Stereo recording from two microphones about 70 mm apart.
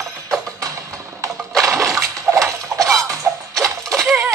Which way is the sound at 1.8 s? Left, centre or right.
Right.